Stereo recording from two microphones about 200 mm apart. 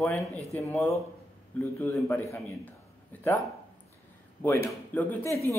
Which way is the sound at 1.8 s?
10° left (ahead or behind).